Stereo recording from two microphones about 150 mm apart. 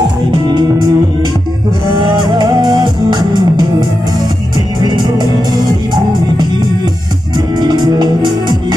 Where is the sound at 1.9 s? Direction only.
30° right (ahead or behind).